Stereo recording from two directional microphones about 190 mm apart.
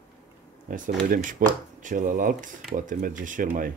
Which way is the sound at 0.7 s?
45° right (ahead or behind).